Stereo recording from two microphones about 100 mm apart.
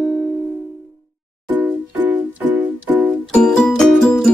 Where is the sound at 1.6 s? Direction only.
20° right (ahead or behind).